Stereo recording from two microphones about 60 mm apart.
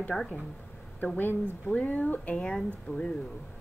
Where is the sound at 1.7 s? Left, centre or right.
Left.